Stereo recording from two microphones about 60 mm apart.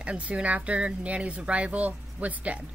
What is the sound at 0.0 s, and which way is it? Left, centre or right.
Speech, centre.